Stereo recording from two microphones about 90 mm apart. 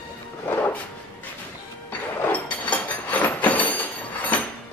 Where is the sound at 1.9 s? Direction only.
15° left (ahead or behind).